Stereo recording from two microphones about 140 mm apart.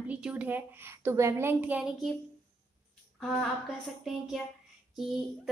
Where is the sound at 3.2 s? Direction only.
Centre (ahead or behind).